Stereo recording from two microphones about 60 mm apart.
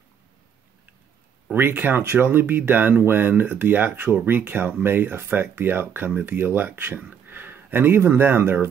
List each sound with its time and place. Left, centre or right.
1.5 s speech: right